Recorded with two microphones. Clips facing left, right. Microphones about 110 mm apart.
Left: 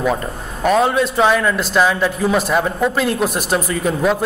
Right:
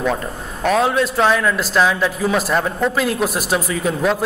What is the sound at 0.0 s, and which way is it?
A man's voice, 5° left (ahead or behind).